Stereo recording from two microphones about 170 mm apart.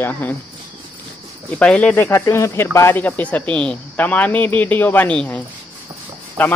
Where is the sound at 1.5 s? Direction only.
5° left (ahead or behind).